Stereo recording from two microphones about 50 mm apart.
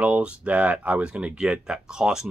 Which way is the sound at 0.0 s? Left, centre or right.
Right.